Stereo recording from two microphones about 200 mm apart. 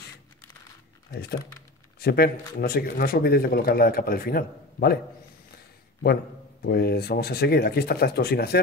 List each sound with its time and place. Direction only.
2.0 s speech: 50° left (ahead or behind)
6.6 s speech: 55° left (ahead or behind)